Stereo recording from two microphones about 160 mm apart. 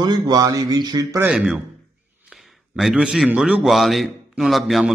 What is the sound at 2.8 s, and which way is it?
A man's voice, centre (ahead or behind).